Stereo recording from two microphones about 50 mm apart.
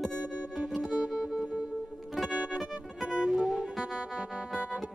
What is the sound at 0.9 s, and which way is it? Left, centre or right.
Music, centre.